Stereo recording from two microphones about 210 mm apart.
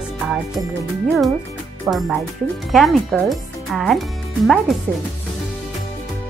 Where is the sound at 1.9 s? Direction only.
5° right (ahead or behind).